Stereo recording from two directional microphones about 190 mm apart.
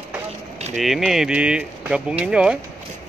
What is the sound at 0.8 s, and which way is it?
Speech, centre (ahead or behind).